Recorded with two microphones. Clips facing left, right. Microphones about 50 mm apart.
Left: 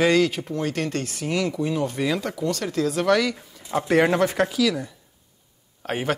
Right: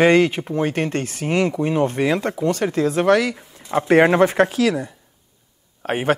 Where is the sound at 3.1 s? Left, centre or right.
Centre.